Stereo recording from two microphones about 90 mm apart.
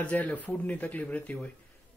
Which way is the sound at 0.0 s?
15° left (ahead or behind).